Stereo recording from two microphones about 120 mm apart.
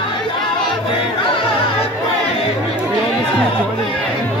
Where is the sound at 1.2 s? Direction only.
50° left (ahead or behind).